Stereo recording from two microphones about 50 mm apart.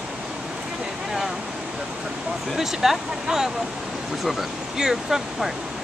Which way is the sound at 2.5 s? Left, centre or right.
Centre.